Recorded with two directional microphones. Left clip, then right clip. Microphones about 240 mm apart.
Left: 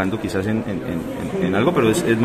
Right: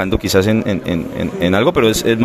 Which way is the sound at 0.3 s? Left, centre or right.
Right.